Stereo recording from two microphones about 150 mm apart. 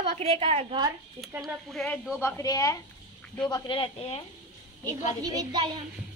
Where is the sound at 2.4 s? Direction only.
25° left (ahead or behind).